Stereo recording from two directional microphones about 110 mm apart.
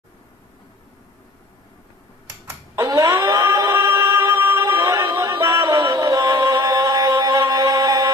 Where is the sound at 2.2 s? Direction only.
25° right (ahead or behind).